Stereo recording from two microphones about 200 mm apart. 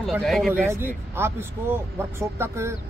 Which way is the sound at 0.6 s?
10° right (ahead or behind).